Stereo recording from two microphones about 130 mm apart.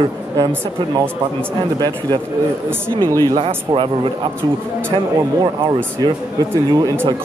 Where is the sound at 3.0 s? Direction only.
20° left (ahead or behind).